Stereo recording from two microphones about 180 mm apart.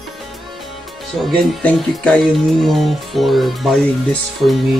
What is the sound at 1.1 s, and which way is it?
Speech, centre (ahead or behind).